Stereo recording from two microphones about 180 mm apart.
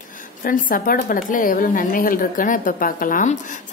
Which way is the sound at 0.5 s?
50° left (ahead or behind).